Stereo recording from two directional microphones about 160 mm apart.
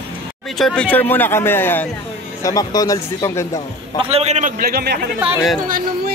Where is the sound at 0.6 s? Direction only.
5° left (ahead or behind).